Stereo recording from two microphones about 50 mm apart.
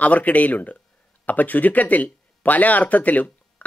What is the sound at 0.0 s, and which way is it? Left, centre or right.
Speech, left.